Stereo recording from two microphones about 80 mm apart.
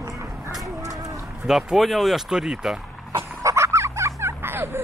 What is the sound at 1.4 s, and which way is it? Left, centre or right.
Speech, centre.